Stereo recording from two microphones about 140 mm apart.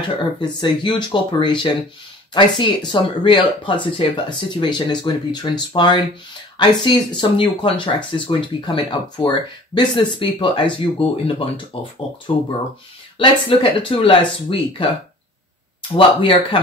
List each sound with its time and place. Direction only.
0.2 s speech: 35° left (ahead or behind)
13.2 s speech: 35° left (ahead or behind)
15.9 s speech: 40° left (ahead or behind)